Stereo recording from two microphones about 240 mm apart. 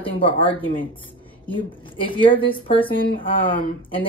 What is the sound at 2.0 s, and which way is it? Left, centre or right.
Speech, left.